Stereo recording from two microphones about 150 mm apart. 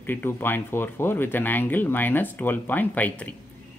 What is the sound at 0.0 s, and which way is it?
Speech, 15° left (ahead or behind).